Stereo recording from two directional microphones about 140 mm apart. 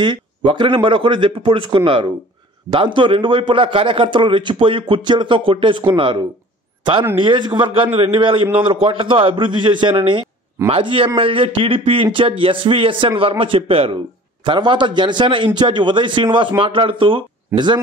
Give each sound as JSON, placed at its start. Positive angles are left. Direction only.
{"t": 0.0, "sound": "a man's voice", "side_deg": -35}